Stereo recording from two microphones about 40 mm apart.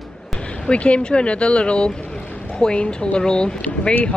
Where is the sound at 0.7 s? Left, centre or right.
Left.